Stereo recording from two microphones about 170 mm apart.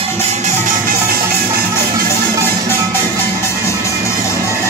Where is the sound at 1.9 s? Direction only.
15° right (ahead or behind).